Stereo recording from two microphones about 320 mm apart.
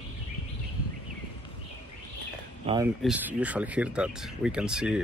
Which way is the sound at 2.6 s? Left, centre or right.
Centre.